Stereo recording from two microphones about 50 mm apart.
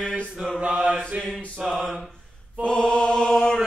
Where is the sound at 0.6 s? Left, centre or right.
Right.